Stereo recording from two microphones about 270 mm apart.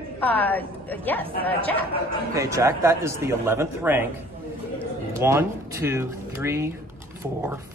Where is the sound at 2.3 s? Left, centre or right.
Centre.